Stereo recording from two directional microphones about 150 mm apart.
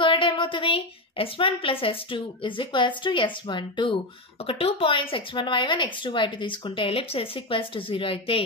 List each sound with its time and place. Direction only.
0.0 s speech: 35° left (ahead or behind)